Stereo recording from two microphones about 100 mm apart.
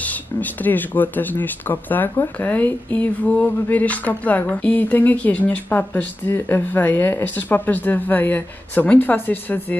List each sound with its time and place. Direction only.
0.0 s speech: 15° left (ahead or behind)